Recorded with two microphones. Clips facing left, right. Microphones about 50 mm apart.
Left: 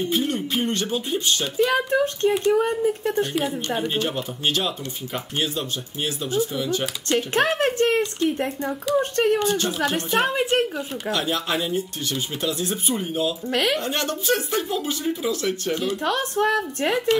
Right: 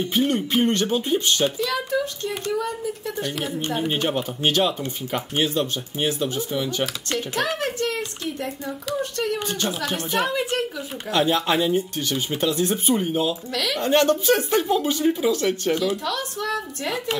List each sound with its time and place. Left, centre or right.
0.1 s speech: right; by 1.5 s centre
1.7 s speech: left
3.6 s speech: centre
4.5 s speech: right
7.2 s speech: left
9.5 s speech: right
10.1 s speech: left
11.1 s speech: right
12.9 s speech: centre
13.5 s speech: left
13.8 s speech: right
16.0 s speech: left